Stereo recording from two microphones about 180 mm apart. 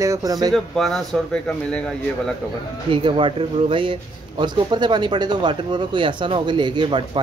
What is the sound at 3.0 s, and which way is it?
A man's voice, 30° right (ahead or behind).